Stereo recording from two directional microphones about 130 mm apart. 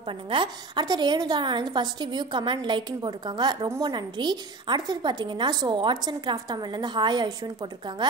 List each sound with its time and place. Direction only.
0.0 s a woman's voice: 40° right (ahead or behind)
3.6 s a woman's voice: 20° right (ahead or behind)
3.9 s a woman's voice: 35° right (ahead or behind)